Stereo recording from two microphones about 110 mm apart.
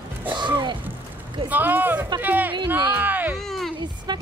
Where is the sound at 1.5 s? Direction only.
15° right (ahead or behind).